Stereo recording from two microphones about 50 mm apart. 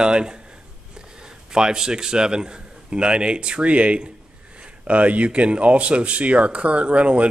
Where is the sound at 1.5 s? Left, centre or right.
Centre.